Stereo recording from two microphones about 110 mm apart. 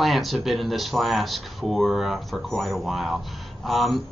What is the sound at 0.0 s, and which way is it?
Speech, centre (ahead or behind).